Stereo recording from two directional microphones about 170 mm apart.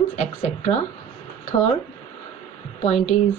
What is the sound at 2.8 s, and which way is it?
Speech, 40° left (ahead or behind).